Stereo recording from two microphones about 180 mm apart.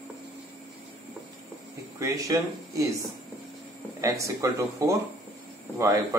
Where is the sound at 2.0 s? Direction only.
20° right (ahead or behind).